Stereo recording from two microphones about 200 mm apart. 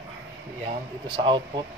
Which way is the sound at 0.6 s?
25° right (ahead or behind).